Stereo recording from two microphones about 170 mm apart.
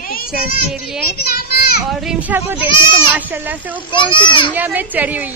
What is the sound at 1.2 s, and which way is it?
Children playing, 65° left (ahead or behind).